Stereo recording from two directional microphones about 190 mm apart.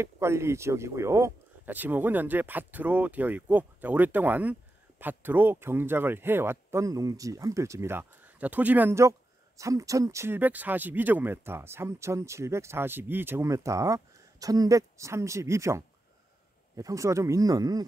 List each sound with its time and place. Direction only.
0.0 s speech: 15° right (ahead or behind)